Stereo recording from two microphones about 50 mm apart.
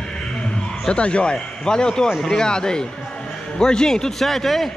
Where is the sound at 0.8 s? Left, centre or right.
Left; by 4.7 s centre.